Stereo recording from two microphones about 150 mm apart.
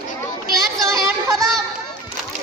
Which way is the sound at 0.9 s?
Centre (ahead or behind).